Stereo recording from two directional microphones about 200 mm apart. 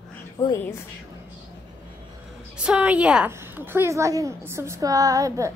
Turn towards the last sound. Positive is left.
turn(degrees=-15)  # may be behind; listen again after turning